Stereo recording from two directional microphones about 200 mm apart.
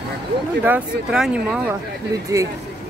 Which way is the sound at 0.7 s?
5° right (ahead or behind).